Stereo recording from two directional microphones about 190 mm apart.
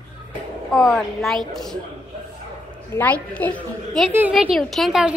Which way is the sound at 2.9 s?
10° left (ahead or behind).